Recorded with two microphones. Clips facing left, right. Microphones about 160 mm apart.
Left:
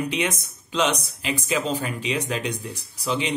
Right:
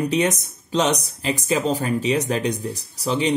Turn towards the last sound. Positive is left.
turn(degrees=-40)  # may be behind; listen again after turning